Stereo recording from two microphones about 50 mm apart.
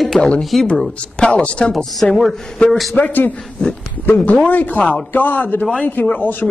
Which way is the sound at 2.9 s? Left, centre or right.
Left.